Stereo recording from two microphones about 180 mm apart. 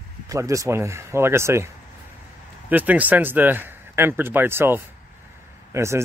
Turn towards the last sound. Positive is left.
turn(degrees=-15)  # may be behind; listen again after turning